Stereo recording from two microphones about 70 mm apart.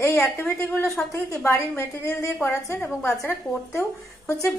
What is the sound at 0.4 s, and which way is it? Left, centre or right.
A woman's voice, left.